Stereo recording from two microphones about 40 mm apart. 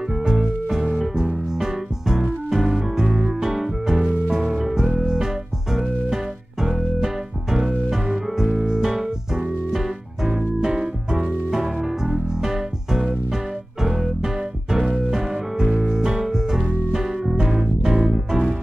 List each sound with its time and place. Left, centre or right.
0.3 s music: centre
8.9 s keyboard: centre
9.7 s music: centre
11.5 s music: centre